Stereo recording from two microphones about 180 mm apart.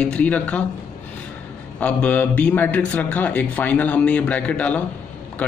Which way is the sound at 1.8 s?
10° left (ahead or behind).